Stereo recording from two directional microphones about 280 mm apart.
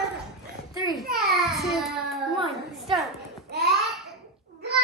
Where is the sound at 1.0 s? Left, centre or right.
Right.